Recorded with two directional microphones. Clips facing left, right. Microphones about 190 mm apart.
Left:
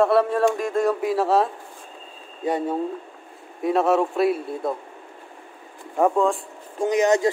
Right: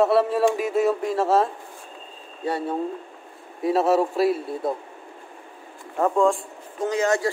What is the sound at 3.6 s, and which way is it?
Speech, centre (ahead or behind).